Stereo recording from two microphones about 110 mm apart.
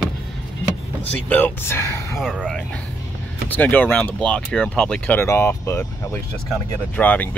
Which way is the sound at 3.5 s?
15° left (ahead or behind).